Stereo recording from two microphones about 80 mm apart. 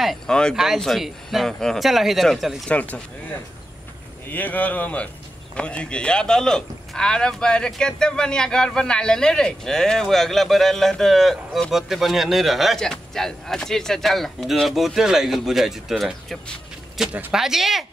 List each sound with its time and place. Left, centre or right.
0.0 s speech: centre
2.7 s speech: centre
4.3 s speech: left; by 17.8 s centre